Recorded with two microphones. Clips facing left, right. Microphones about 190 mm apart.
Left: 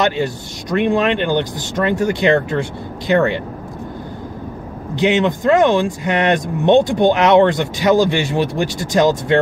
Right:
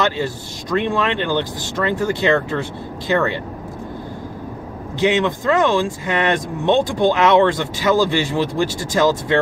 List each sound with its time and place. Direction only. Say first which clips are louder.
0.0 s speech: left 3 dB; 20° left (ahead or behind)
4.9 s speech: left 2 dB; 20° left (ahead or behind)